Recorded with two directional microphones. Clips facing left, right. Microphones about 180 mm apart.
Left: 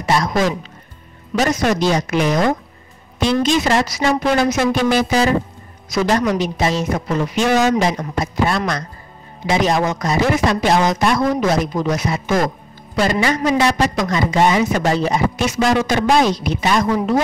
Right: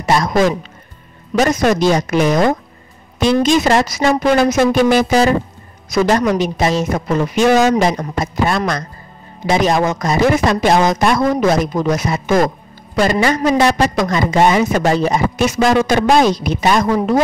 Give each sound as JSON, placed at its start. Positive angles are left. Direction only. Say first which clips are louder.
{"t": 0.0, "sound": "a man's voice", "louder": "right 3 dB", "side_deg": -45}